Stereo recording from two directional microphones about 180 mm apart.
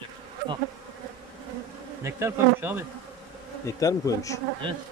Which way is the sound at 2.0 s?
15° right (ahead or behind).